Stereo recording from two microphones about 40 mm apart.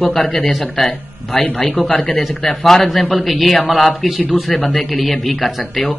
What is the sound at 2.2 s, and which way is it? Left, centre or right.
A man's voice, centre.